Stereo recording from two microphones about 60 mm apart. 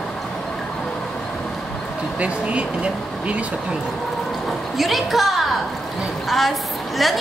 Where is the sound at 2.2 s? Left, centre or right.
Right.